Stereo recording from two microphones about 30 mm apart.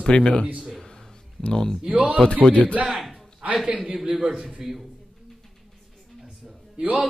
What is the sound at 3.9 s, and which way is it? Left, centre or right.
Speech, centre.